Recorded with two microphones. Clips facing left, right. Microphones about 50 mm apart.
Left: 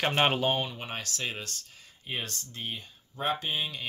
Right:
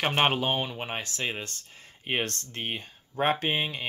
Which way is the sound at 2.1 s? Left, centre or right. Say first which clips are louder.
Right 6 dB; right.